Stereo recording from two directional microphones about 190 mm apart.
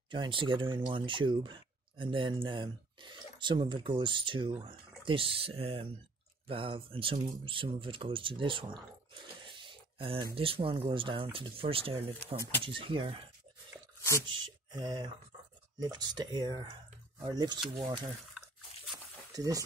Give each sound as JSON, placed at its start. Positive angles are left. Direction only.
{"t": 0.1, "sound": "speech", "side_deg": -25}
{"t": 14.7, "sound": "speech", "side_deg": -20}
{"t": 19.3, "sound": "speech", "side_deg": -20}